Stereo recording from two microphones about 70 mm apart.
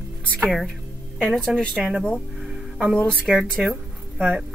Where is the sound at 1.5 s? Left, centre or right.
Centre.